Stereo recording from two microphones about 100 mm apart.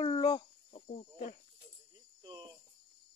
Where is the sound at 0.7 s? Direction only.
90° left.